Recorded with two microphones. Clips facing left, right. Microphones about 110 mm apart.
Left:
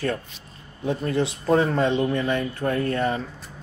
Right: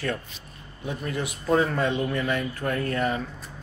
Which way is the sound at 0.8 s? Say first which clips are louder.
Left 7 dB; 30° left (ahead or behind).